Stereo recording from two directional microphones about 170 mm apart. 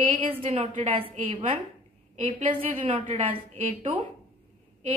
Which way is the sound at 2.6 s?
35° right (ahead or behind).